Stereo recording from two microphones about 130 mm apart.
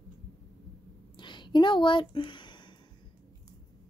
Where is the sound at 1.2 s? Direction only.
35° left (ahead or behind).